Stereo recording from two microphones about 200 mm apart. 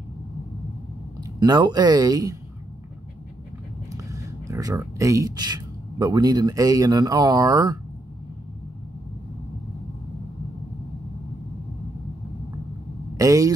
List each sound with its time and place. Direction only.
1.2 s speech: 20° right (ahead or behind)
3.9 s speech: 15° right (ahead or behind)
13.2 s speech: 15° right (ahead or behind)